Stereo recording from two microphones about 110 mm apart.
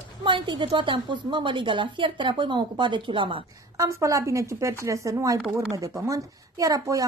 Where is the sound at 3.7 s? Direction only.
25° right (ahead or behind).